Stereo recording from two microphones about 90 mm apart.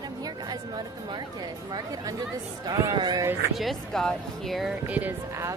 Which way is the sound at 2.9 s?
50° right (ahead or behind).